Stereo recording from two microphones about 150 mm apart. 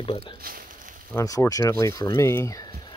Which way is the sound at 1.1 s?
20° left (ahead or behind).